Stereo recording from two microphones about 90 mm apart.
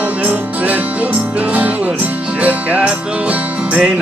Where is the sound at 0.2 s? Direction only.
15° right (ahead or behind).